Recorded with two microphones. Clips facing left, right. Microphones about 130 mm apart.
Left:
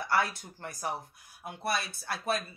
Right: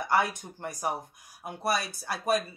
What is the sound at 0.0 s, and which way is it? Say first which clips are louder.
Speech: right 3 dB; 15° right (ahead or behind).